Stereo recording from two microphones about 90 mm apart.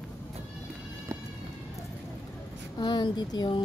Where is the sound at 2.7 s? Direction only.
55° left (ahead or behind).